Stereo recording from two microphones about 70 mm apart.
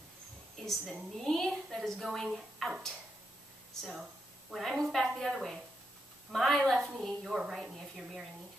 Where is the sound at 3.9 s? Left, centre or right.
Centre.